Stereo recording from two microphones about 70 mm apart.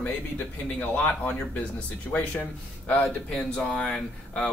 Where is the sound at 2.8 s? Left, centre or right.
Centre.